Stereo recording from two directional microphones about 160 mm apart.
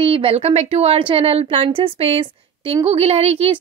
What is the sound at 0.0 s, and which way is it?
A woman's voice, 35° right (ahead or behind).